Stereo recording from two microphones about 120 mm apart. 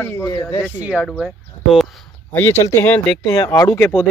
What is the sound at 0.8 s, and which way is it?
Speech, 10° right (ahead or behind).